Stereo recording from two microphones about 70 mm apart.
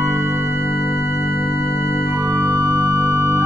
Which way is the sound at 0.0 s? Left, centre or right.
Right.